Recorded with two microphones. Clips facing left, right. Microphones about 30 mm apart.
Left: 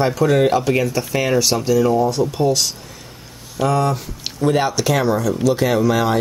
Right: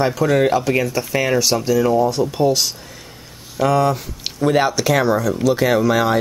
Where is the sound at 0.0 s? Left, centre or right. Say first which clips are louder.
Left 1 dB; centre.